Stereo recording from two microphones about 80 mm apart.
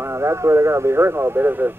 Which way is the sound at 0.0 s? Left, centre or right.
Right.